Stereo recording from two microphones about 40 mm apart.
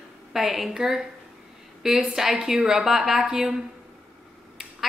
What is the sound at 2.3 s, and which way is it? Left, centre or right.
Speech, right.